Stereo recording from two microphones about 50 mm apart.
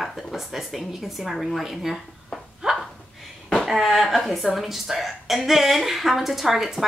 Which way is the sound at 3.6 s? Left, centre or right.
Centre.